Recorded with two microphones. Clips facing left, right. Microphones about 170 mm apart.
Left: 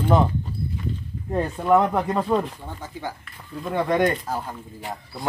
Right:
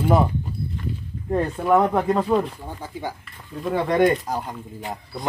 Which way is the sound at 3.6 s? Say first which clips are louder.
Right 1 dB; centre (ahead or behind).